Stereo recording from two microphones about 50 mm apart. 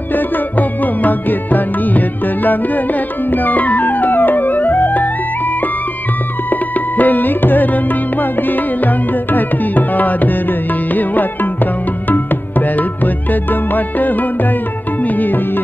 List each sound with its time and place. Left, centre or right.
0.1 s music: left
6.5 s music: left